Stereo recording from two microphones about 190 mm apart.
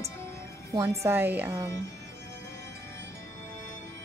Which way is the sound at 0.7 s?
15° right (ahead or behind).